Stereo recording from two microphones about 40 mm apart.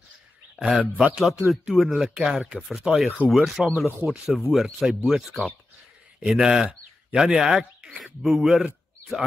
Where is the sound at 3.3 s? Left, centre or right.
Centre.